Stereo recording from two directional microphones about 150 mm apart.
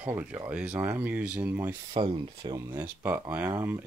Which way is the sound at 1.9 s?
35° right (ahead or behind).